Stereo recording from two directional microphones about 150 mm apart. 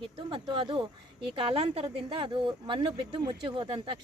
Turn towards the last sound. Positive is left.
turn(degrees=-35)  # may be behind; listen again after turning